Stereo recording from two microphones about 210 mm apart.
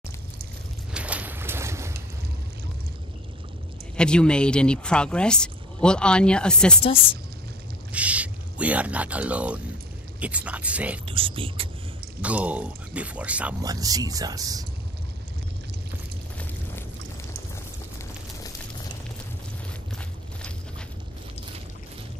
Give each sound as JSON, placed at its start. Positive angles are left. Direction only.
{"t": 0.9, "sound": "boat", "side_deg": -5}
{"t": 3.9, "sound": "speech", "side_deg": 5}
{"t": 7.9, "sound": "speech", "side_deg": -5}
{"t": 11.1, "sound": "speech", "side_deg": -25}
{"t": 12.2, "sound": "speech", "side_deg": -5}
{"t": 13.6, "sound": "speech", "side_deg": -15}